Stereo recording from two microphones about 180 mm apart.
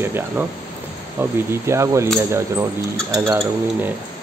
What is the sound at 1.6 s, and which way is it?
Speech, 15° right (ahead or behind).